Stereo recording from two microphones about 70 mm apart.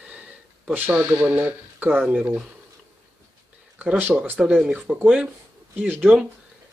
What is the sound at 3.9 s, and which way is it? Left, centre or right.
Speech, right.